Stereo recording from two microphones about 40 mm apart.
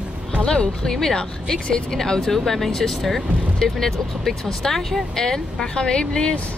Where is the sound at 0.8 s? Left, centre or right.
Centre.